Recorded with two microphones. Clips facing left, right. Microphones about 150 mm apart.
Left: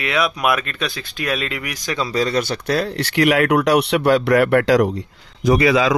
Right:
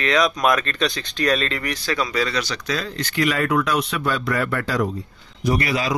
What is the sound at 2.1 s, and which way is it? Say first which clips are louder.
Speech: left 4 dB; 40° left (ahead or behind).